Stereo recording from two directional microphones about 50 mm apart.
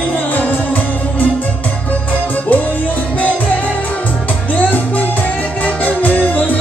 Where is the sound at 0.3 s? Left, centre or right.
Left.